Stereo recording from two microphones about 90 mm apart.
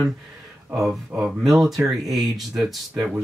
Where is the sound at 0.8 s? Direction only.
5° right (ahead or behind).